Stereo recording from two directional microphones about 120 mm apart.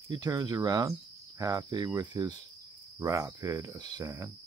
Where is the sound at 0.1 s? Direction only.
35° right (ahead or behind).